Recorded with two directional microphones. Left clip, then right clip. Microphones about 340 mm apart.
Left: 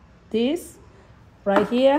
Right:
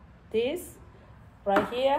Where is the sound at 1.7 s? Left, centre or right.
Left.